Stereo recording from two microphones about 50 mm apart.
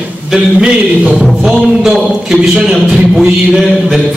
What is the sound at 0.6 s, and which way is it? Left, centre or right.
Speech, right.